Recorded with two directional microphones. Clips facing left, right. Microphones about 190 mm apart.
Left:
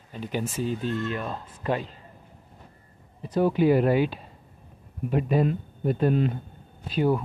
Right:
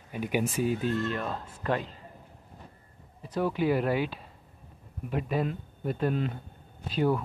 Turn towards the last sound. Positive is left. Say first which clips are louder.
# left 3 dB
turn(degrees=10)  # may be behind; listen again after turning